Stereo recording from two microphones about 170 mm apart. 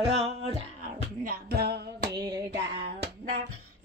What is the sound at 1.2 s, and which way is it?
Music, 70° right (ahead or behind).